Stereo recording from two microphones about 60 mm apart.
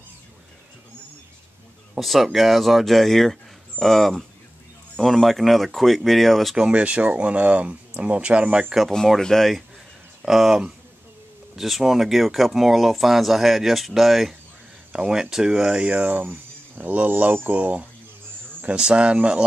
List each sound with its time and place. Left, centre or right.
2.0 s speech: centre
6.5 s speech: centre
8.7 s speech: centre
15.8 s speech: right